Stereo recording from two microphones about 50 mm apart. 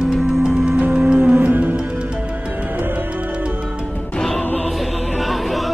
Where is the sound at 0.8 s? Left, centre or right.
Right.